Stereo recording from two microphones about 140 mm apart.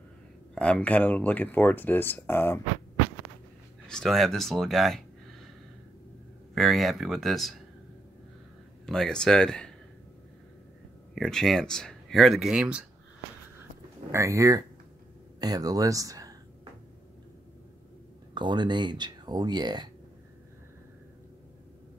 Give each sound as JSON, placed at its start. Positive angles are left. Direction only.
{"t": 0.6, "sound": "speech", "side_deg": 10}
{"t": 3.8, "sound": "speech", "side_deg": 5}
{"t": 6.5, "sound": "speech", "side_deg": 0}
{"t": 8.8, "sound": "speech", "side_deg": 5}
{"t": 11.1, "sound": "speech", "side_deg": 5}
{"t": 14.1, "sound": "speech", "side_deg": -20}
{"t": 18.3, "sound": "speech", "side_deg": -35}